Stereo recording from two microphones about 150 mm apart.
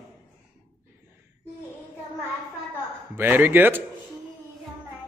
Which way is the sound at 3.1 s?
15° right (ahead or behind).